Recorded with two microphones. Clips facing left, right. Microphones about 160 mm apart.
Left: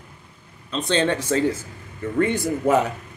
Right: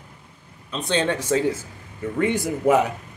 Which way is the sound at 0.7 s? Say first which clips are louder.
Left 2 dB; 10° right (ahead or behind).